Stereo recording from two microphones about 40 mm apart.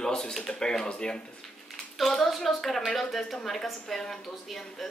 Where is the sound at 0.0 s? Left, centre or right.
Centre.